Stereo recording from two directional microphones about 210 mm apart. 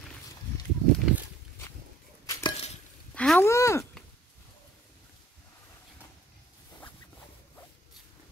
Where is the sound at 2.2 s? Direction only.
15° left (ahead or behind).